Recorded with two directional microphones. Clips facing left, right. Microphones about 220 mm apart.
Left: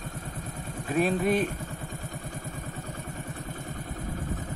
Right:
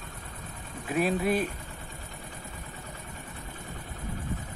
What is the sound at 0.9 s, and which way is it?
Speech, 10° right (ahead or behind).